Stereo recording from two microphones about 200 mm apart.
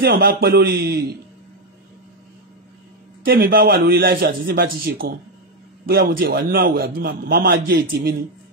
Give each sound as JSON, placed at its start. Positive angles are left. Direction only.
{"t": 0.0, "sound": "a man's voice", "side_deg": -50}
{"t": 3.3, "sound": "a man's voice", "side_deg": -50}